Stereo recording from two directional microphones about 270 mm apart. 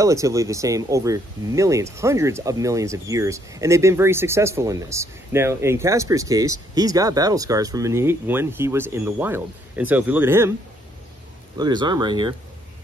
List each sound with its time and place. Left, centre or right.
0.0 s speech: centre
11.5 s speech: centre